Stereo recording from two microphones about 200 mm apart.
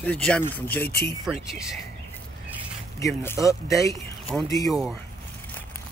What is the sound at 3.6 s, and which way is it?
Speech, 15° left (ahead or behind).